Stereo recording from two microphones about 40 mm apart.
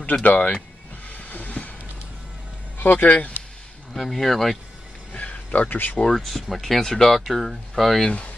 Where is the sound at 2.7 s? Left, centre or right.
Left.